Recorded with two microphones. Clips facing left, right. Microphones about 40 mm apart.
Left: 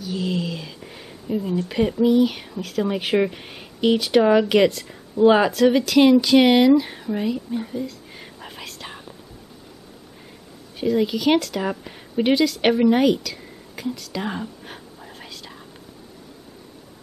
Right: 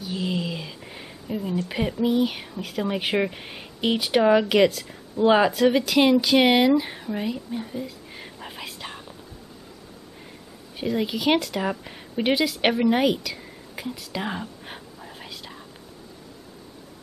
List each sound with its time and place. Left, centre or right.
0.0 s speech: centre
7.8 s whispering: centre
10.8 s speech: centre